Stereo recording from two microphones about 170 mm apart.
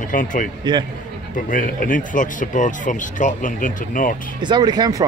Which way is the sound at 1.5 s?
50° left (ahead or behind).